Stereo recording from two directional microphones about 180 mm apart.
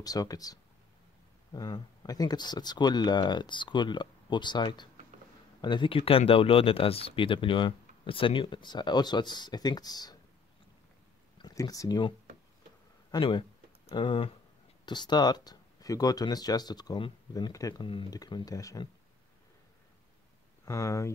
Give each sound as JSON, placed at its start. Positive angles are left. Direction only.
{"t": 0.0, "sound": "speech", "side_deg": 20}
{"t": 11.3, "sound": "speech", "side_deg": 20}
{"t": 13.1, "sound": "speech", "side_deg": 30}
{"t": 20.6, "sound": "speech", "side_deg": 15}